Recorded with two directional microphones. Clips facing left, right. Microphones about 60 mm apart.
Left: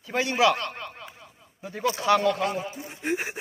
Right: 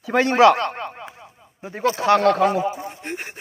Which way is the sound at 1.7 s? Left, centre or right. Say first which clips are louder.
Right 5 dB; right.